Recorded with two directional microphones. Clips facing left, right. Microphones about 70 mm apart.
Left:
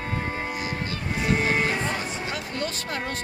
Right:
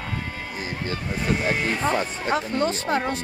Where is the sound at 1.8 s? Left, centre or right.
Right.